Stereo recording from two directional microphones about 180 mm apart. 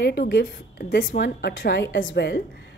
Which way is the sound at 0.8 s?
50° left (ahead or behind).